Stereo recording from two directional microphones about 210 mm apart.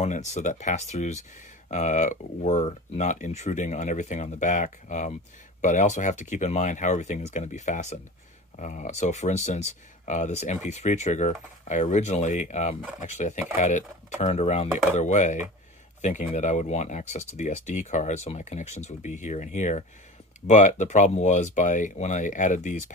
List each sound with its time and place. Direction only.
0.0 s speech: 35° left (ahead or behind)